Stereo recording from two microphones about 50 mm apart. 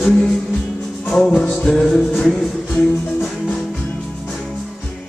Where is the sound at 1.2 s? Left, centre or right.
Centre.